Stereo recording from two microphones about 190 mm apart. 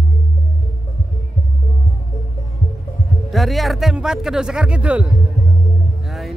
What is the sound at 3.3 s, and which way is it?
Speech, centre (ahead or behind).